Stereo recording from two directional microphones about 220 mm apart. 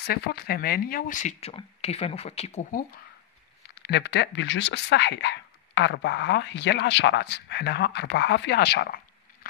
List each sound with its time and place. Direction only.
0.0 s speech: 45° left (ahead or behind); by 2.8 s 30° left (ahead or behind)
3.6 s speech: 50° left (ahead or behind)